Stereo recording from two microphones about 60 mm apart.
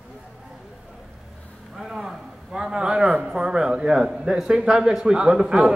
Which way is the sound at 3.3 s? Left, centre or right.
Centre.